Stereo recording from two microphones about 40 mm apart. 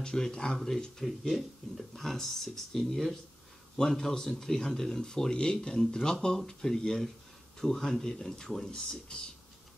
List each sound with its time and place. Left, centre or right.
0.0 s speech: centre
0.5 s speech: centre